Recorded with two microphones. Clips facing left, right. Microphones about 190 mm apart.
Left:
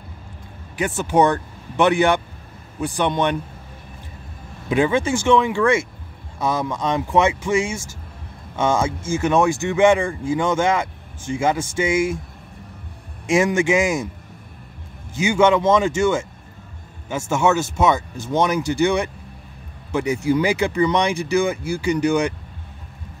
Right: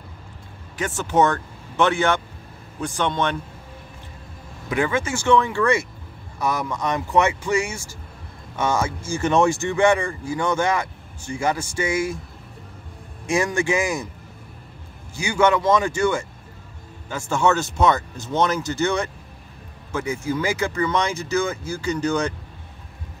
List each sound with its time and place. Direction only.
0.7 s speech: 15° left (ahead or behind)
4.6 s speech: 20° left (ahead or behind)
6.4 s speech: 25° left (ahead or behind)
13.3 s speech: 20° left (ahead or behind)
15.1 s speech: 25° left (ahead or behind)
17.4 s speech: 10° left (ahead or behind)